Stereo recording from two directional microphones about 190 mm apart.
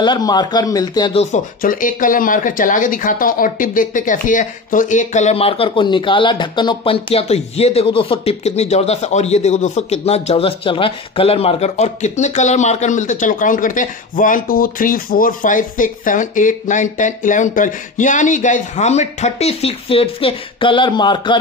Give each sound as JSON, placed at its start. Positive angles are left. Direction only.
{"t": 0.0, "sound": "a man's voice", "side_deg": 20}
{"t": 1.1, "sound": "speech", "side_deg": 45}